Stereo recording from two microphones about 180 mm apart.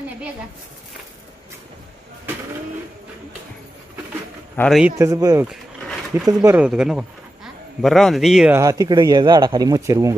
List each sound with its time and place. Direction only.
4.6 s speech: centre (ahead or behind)
4.9 s speech: 20° right (ahead or behind)
5.5 s a sound: centre (ahead or behind)
6.2 s speech: 10° right (ahead or behind)
8.5 s speech: 20° right (ahead or behind)